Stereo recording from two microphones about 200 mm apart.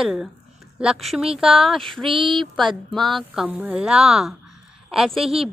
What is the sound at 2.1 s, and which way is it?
Speech, 25° right (ahead or behind).